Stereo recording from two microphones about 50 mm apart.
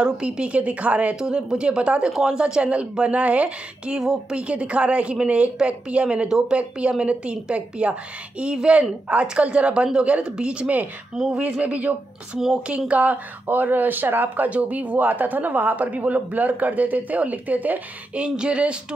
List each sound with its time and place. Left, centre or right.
0.0 s a woman's voice: centre
1.2 s a woman's voice: centre
6.2 s a woman's voice: centre; by 17.7 s right
18.1 s a woman's voice: centre